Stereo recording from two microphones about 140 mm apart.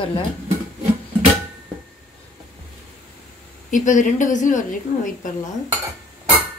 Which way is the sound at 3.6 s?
65° left (ahead or behind).